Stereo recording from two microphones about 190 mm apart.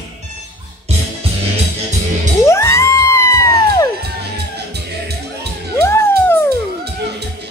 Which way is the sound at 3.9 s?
60° right (ahead or behind).